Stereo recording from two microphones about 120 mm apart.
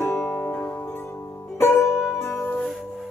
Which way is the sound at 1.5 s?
20° left (ahead or behind).